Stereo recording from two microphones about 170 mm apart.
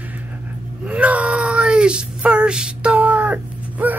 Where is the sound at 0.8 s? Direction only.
10° right (ahead or behind).